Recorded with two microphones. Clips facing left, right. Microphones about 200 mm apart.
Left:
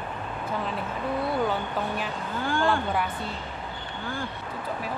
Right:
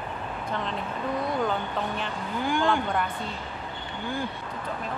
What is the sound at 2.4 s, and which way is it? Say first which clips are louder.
Speech: right 1 dB; 15° right (ahead or behind).